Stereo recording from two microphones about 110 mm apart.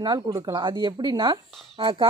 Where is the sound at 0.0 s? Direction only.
40° right (ahead or behind).